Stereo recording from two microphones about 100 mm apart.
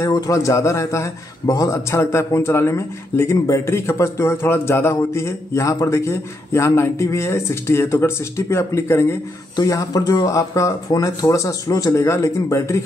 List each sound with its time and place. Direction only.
0.0 s a man's voice: 35° left (ahead or behind)
9.6 s speech: 35° left (ahead or behind)